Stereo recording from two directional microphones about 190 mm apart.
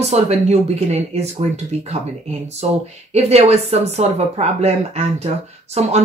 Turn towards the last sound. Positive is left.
turn(degrees=-35)  # may be behind; listen again after turning